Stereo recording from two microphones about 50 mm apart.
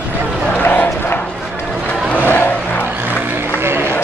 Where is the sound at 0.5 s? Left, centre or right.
Left.